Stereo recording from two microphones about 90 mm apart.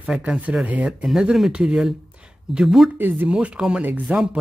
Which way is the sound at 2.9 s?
20° right (ahead or behind).